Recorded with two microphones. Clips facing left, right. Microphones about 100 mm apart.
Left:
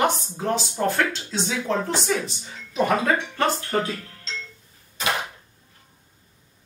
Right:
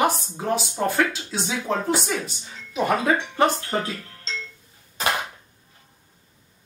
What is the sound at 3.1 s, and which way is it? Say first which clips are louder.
Speech: right 3 dB; 20° right (ahead or behind).